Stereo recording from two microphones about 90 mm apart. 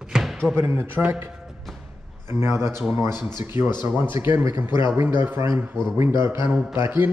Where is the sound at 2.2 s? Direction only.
30° right (ahead or behind).